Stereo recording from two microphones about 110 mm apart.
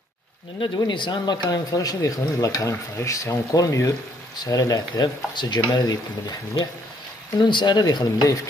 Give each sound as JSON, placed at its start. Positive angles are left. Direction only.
{"t": 0.7, "sound": "speech", "side_deg": 45}